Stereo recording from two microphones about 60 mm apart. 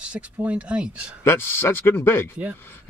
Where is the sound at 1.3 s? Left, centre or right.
Left.